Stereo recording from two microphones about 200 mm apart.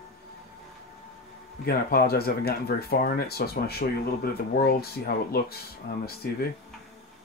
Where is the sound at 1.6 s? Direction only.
50° left (ahead or behind).